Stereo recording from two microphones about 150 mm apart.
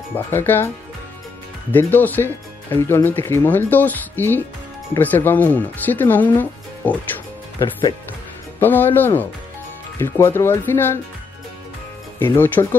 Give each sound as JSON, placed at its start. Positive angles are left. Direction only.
{"t": 0.1, "sound": "speech", "side_deg": 15}
{"t": 1.7, "sound": "speech", "side_deg": 10}
{"t": 8.5, "sound": "speech", "side_deg": 10}
{"t": 12.2, "sound": "speech", "side_deg": 15}